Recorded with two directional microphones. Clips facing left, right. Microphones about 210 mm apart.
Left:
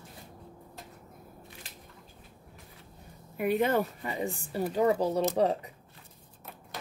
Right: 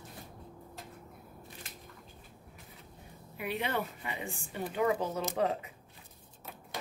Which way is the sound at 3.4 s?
45° left (ahead or behind).